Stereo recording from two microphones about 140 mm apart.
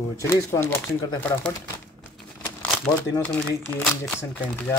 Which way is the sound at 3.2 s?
10° left (ahead or behind).